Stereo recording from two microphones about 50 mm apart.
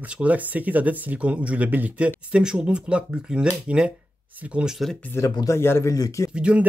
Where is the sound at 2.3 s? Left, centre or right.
Centre.